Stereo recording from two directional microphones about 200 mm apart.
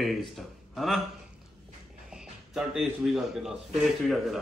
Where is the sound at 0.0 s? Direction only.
Centre (ahead or behind).